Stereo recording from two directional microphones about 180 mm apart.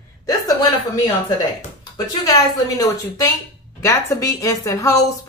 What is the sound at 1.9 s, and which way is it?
A woman's voice, 20° left (ahead or behind).